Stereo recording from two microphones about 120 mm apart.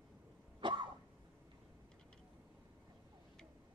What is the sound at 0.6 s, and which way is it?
Cough, 40° right (ahead or behind).